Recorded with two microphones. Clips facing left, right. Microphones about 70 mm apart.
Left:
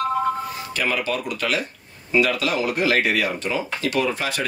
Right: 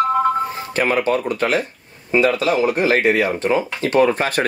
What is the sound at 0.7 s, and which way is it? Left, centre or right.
Speech, right.